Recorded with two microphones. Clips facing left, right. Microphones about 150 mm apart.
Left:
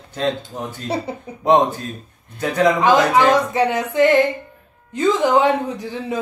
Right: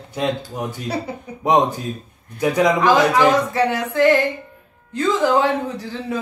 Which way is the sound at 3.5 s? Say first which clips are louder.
Left 1 dB; 20° left (ahead or behind).